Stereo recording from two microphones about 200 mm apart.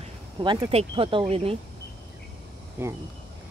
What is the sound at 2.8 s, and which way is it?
Speech, 10° right (ahead or behind).